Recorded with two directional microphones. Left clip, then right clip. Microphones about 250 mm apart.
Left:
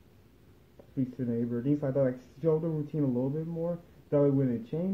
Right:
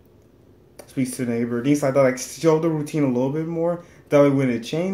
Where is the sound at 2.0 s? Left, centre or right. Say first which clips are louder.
Right 11 dB; right.